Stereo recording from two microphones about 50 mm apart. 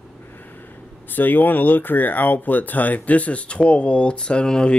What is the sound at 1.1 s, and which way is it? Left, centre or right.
Speech, left.